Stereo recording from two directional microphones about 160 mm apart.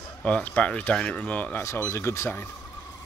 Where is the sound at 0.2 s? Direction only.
10° left (ahead or behind).